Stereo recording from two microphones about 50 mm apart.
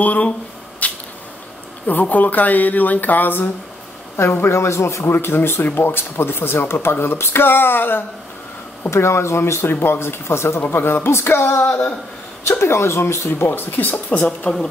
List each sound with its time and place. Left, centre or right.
0.0 s a sound: left
1.9 s speech: left
4.2 s speech: left
5.1 s speech: left
8.8 s speech: left